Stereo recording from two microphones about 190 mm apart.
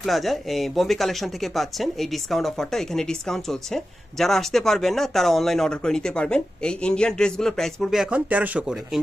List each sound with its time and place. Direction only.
0.0 s speech: centre (ahead or behind)